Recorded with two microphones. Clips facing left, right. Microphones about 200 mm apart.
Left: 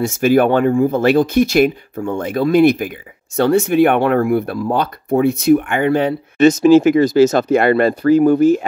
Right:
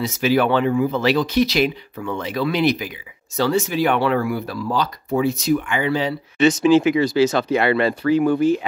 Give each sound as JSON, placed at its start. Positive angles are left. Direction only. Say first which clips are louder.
{"t": 0.0, "sound": "speech", "louder": "left 5 dB", "side_deg": 50}